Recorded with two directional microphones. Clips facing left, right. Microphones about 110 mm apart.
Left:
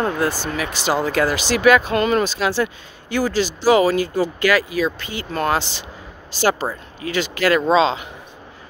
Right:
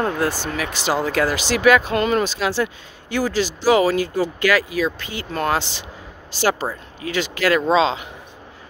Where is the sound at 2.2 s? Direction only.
45° left (ahead or behind).